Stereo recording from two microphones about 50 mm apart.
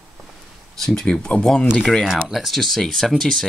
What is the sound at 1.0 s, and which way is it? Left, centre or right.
Speech, centre.